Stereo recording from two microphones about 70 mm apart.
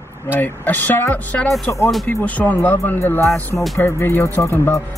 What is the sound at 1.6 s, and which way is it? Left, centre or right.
Speech, left.